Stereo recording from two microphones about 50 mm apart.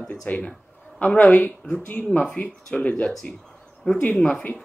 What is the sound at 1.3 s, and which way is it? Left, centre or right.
A man's voice, left.